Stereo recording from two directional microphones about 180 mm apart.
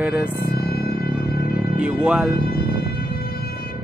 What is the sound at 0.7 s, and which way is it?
Music, 60° left (ahead or behind).